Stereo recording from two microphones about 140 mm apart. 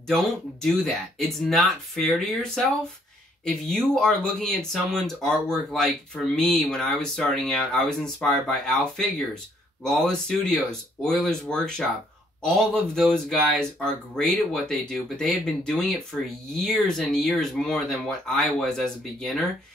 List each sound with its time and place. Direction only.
0.1 s speech: 5° left (ahead or behind)